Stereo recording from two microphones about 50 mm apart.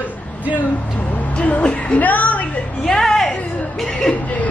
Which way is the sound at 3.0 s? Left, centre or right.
Centre.